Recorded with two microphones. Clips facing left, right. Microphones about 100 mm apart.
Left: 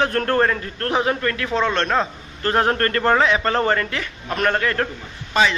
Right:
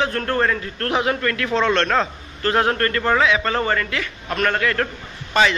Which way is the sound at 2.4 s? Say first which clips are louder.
Even; 35° left (ahead or behind).